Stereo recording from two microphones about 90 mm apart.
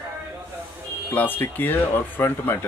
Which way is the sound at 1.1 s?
20° left (ahead or behind).